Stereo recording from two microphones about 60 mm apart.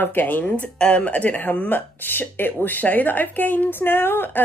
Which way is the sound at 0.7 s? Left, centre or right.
Centre.